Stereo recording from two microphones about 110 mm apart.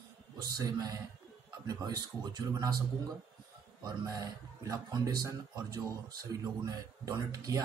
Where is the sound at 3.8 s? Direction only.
35° right (ahead or behind).